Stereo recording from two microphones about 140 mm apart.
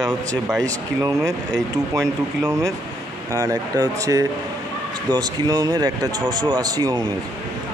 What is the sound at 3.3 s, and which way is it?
Speech, 25° right (ahead or behind).